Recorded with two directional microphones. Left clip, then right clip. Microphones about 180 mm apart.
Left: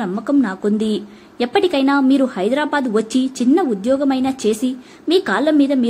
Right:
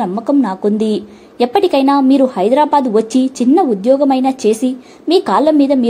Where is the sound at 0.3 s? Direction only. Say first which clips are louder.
Right 3 dB; 5° right (ahead or behind).